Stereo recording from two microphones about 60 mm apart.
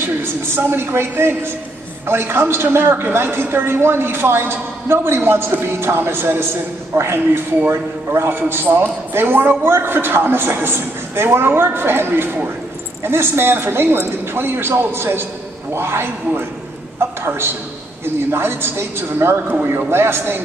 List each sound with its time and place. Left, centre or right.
0.0 s a man's voice: right
17.2 s a woman's voice: right